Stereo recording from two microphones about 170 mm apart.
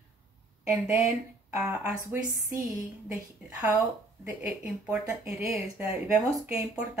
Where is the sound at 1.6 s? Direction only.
10° right (ahead or behind).